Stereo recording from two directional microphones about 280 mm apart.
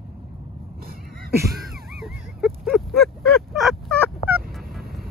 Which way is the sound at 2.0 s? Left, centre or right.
Centre.